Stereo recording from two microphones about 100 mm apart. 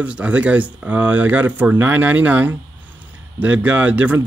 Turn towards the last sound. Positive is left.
turn(degrees=-15)  # may be behind; listen again after turning